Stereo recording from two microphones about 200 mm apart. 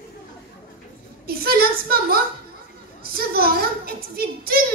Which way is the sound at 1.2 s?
50° right (ahead or behind).